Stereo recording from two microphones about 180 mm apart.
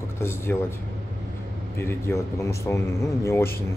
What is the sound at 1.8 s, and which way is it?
Speech, 15° left (ahead or behind).